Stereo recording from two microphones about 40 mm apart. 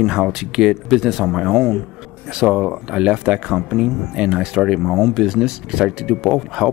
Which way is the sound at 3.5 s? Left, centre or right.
Centre.